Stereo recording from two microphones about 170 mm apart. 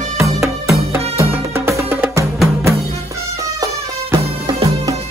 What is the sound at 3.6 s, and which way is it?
Music, 20° right (ahead or behind).